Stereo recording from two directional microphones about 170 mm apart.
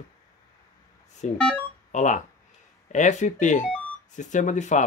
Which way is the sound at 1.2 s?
45° left (ahead or behind).